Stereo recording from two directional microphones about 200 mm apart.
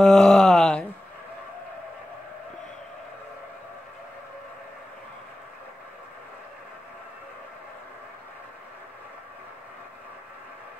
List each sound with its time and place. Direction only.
0.0 s wail: 5° left (ahead or behind)